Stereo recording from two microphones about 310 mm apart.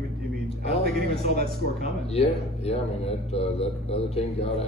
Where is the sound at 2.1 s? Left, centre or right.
Centre.